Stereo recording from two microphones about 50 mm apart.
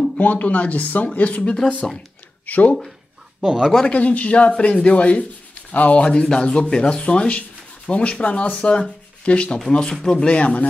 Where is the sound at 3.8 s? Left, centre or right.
Left.